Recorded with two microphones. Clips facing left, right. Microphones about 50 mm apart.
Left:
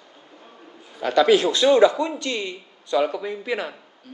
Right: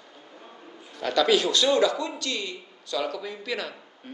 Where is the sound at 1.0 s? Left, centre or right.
Centre.